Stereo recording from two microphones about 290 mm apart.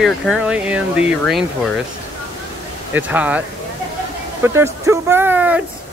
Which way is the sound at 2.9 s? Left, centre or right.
Centre.